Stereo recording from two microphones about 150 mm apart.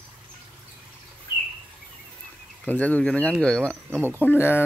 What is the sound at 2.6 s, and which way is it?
Speech, 10° left (ahead or behind).